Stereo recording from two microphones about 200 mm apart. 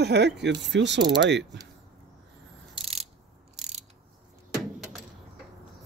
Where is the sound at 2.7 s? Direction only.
30° right (ahead or behind).